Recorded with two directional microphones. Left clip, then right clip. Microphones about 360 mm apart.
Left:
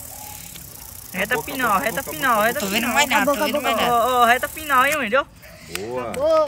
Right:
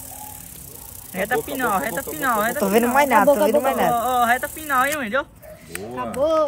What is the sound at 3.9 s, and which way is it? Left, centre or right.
Speech, centre.